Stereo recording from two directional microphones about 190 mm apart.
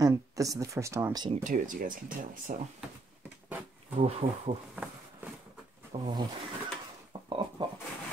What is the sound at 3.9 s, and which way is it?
Speech, 35° right (ahead or behind).